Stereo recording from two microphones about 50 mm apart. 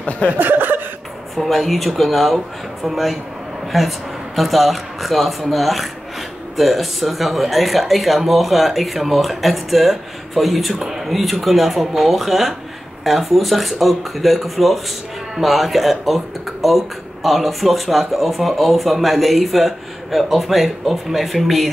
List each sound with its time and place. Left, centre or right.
0.4 s chuckle: right
1.3 s speech: centre